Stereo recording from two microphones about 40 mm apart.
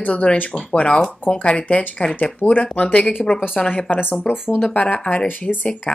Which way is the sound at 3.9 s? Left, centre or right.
Left.